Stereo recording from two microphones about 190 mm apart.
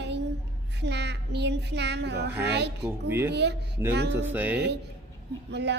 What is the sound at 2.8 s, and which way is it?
Speech, 10° right (ahead or behind).